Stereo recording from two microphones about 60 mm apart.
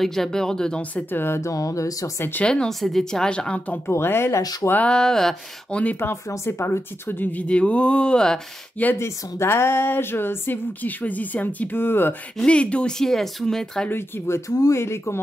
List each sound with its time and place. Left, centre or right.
0.0 s speech: centre
0.9 s speech: left
1.4 s speech: left
2.4 s speech: centre
3.9 s speech: left
4.4 s speech: left
4.8 s speech: centre
5.7 s speech: left
6.2 s speech: left
7.4 s speech: left
9.0 s speech: left
12.4 s speech: centre
13.8 s speech: left